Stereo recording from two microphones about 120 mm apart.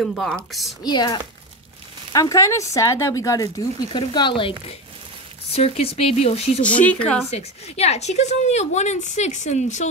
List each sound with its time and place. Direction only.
0.0 s speech: centre (ahead or behind)
0.8 s speech: 35° left (ahead or behind)
2.1 s speech: 25° left (ahead or behind)
3.9 s speech: 40° left (ahead or behind); by 6.6 s 60° left (ahead or behind)
6.6 s speech: 10° left (ahead or behind)
7.2 s a woman's voice: 60° left (ahead or behind); by 9.8 s 80° left